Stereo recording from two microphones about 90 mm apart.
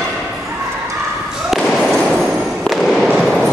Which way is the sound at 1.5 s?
Centre (ahead or behind).